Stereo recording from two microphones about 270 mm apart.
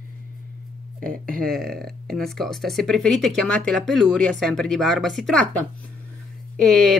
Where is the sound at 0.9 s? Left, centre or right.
Right.